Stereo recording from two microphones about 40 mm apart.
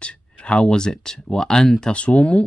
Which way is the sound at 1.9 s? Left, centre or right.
Left.